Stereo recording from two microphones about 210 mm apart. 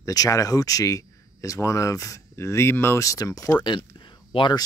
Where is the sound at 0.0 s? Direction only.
15° left (ahead or behind).